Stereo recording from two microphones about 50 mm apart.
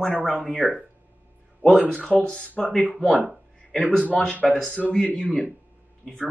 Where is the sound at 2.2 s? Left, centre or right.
Centre.